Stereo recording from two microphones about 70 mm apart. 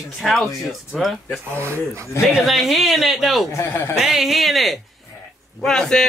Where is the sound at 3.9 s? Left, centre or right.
Centre.